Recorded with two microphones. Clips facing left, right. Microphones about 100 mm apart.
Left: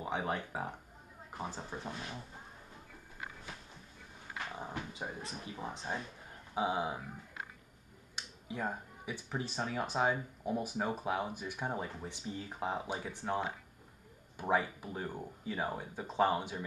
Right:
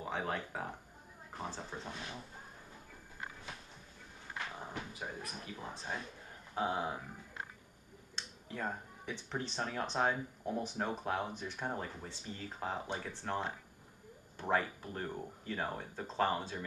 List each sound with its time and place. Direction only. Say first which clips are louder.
0.0 s speech: left 2 dB; 15° left (ahead or behind)
4.3 s a sound: left 2 dB; 10° left (ahead or behind)
4.9 s speech: left 1 dB; 20° left (ahead or behind)
8.2 s speech: left 2 dB; 10° left (ahead or behind)